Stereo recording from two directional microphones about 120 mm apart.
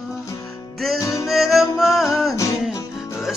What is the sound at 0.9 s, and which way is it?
Music, 25° left (ahead or behind).